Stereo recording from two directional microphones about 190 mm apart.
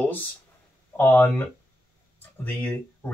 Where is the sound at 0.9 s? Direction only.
10° left (ahead or behind).